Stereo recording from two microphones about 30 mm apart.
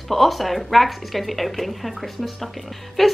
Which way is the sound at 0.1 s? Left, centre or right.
Centre.